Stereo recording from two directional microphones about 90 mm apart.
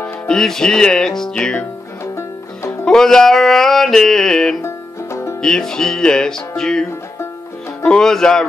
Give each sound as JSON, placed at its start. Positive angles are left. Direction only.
{"t": 0.3, "sound": "music", "side_deg": 5}
{"t": 2.8, "sound": "music", "side_deg": 5}
{"t": 4.6, "sound": "music", "side_deg": 35}
{"t": 5.4, "sound": "music", "side_deg": 5}
{"t": 7.9, "sound": "music", "side_deg": 5}